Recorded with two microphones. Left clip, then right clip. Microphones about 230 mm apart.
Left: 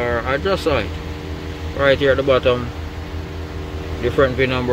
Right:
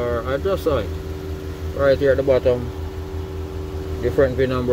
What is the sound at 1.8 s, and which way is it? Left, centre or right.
Speech, centre.